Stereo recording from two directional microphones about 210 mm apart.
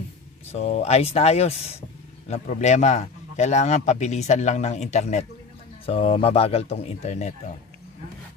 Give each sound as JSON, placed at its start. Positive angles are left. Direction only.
{"t": 0.5, "sound": "a man's voice", "side_deg": 30}